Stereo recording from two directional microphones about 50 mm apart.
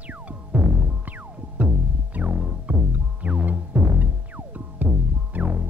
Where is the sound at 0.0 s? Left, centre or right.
Right.